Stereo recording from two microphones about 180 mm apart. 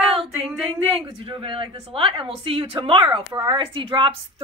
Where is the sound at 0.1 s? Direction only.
30° right (ahead or behind).